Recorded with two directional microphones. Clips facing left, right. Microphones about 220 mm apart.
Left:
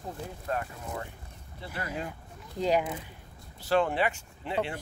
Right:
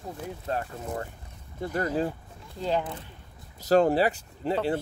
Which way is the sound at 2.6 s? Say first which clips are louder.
Left 1 dB; 15° left (ahead or behind).